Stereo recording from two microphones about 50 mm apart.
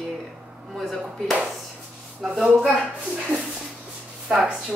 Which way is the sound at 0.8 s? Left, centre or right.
Centre.